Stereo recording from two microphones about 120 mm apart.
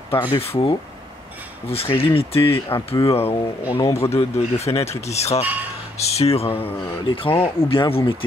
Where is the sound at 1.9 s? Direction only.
50° left (ahead or behind).